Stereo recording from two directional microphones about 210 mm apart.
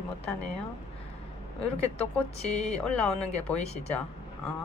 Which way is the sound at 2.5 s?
30° left (ahead or behind).